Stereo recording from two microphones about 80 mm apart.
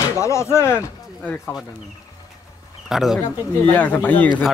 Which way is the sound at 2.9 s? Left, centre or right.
Centre.